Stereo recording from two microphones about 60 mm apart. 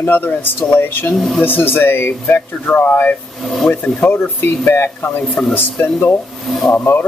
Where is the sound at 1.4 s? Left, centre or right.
Left.